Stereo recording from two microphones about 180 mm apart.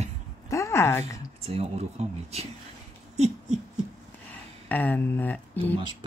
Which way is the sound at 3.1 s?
35° right (ahead or behind).